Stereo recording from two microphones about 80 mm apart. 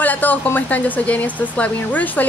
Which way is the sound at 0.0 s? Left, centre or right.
Left.